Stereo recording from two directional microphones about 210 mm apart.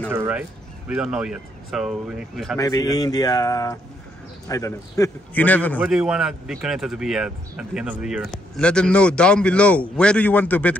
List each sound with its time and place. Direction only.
0.1 s speech: 10° right (ahead or behind)
2.5 s a man's voice: 15° left (ahead or behind)
5.8 s speech: 5° right (ahead or behind)